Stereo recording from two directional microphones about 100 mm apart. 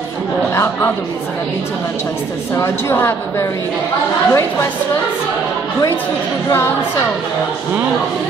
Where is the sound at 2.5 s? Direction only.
30° left (ahead or behind).